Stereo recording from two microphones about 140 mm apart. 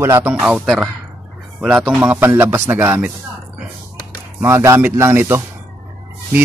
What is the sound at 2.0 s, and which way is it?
Speech, 15° right (ahead or behind).